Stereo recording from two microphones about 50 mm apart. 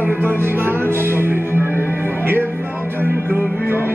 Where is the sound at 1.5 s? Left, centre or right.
Left.